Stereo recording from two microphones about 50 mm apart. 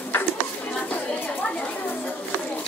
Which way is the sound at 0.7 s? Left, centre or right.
Left.